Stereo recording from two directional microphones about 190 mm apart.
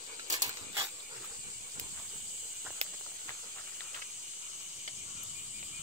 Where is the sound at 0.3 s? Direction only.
20° right (ahead or behind).